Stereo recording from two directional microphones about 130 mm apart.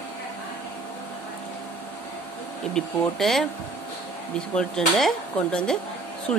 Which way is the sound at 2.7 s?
5° left (ahead or behind).